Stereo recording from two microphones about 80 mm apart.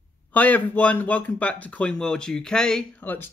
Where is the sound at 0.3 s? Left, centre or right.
Centre.